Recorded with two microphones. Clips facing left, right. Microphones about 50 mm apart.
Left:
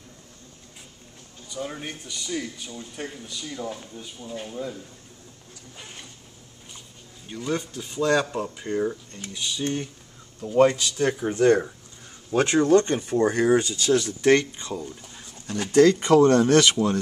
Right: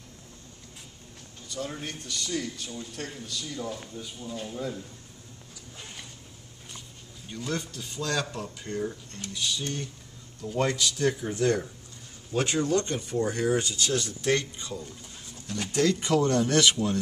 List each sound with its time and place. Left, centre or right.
1.5 s speech: centre
7.2 s speech: centre; by 11.7 s left
12.3 s speech: left
14.2 s speech: left